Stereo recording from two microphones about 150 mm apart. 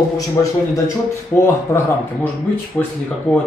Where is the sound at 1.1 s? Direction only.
20° left (ahead or behind).